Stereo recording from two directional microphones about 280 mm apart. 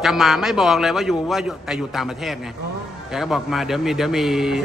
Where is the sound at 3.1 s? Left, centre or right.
Centre.